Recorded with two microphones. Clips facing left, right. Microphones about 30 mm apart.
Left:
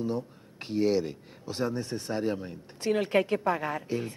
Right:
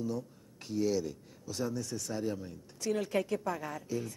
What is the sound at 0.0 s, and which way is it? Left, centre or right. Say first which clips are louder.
Speech: left 5 dB; left.